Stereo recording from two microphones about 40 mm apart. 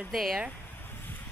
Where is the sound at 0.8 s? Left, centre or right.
Left.